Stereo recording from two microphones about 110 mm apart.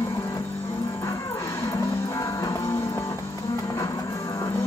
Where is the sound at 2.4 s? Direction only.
25° left (ahead or behind).